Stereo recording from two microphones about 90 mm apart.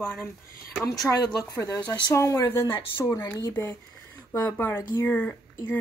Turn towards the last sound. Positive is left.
turn(degrees=20)  # may be behind; listen again after turning